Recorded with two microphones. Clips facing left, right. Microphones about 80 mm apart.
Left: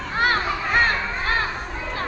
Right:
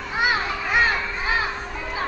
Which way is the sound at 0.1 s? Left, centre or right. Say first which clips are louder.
Left 1 dB; centre.